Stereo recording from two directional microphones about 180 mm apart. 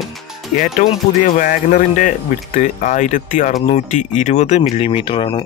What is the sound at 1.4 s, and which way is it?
Speech, 45° left (ahead or behind).